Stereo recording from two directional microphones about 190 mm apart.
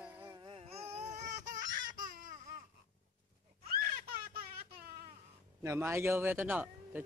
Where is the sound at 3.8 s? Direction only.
50° right (ahead or behind).